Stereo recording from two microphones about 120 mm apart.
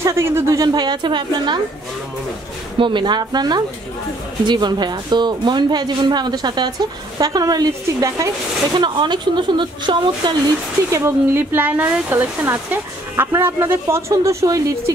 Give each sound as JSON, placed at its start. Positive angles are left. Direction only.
{"t": 0.0, "sound": "speech", "side_deg": -25}
{"t": 2.8, "sound": "speech", "side_deg": -40}
{"t": 8.7, "sound": "speech", "side_deg": -40}
{"t": 10.9, "sound": "speech", "side_deg": -25}